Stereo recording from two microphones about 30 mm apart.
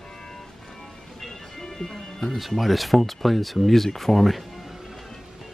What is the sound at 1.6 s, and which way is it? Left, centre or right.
Music, centre.